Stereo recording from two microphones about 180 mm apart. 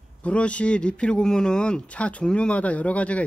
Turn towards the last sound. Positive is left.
turn(degrees=5)  # may be behind; listen again after turning